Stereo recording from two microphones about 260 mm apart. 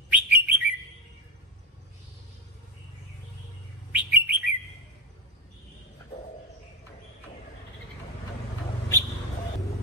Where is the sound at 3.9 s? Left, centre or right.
Centre.